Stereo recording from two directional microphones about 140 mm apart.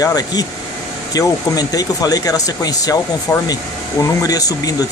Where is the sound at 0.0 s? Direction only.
30° left (ahead or behind).